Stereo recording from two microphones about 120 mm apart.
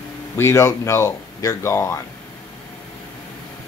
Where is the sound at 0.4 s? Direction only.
20° left (ahead or behind).